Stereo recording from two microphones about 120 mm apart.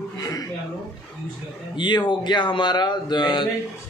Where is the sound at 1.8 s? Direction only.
40° left (ahead or behind).